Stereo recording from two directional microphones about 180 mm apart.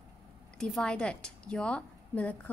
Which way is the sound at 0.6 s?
5° left (ahead or behind).